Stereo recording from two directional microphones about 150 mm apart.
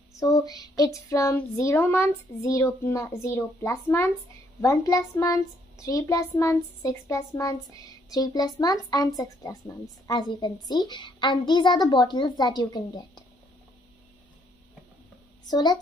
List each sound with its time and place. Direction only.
0.2 s a woman's voice: 25° left (ahead or behind)
15.4 s a woman's voice: 25° left (ahead or behind)